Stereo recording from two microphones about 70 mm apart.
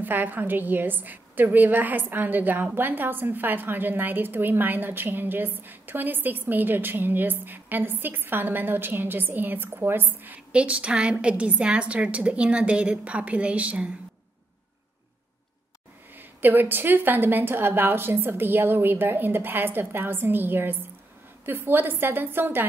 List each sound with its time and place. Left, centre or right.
0.0 s a woman's voice: right
10.5 s a woman's voice: centre
16.2 s a woman's voice: right